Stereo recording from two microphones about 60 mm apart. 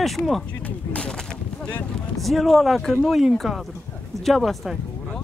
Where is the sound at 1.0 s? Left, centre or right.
Centre.